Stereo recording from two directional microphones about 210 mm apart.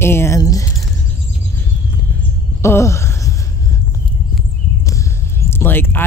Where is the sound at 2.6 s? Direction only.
15° left (ahead or behind).